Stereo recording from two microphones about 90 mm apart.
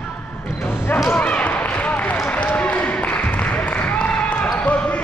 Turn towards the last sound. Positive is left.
turn(degrees=15)  # may be behind; listen again after turning